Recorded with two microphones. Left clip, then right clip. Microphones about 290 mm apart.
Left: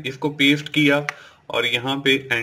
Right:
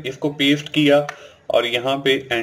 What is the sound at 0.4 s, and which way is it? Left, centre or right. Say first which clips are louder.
Speech: left 1 dB; left.